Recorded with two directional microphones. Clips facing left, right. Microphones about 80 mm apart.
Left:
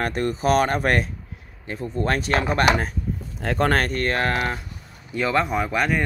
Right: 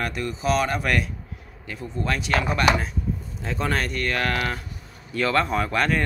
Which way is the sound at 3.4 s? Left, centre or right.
Left.